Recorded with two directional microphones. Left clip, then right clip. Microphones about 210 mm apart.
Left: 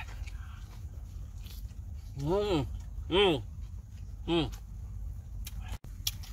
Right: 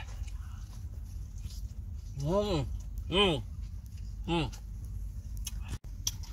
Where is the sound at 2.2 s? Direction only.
25° left (ahead or behind).